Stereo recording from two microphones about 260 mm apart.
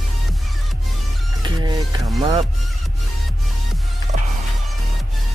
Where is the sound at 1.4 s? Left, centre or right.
Centre.